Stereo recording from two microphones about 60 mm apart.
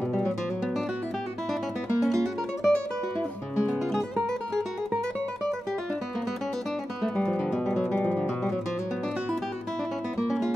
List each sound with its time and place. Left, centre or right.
2.0 s music: centre
7.5 s guitar: centre
7.8 s guitar: left
10.1 s music: centre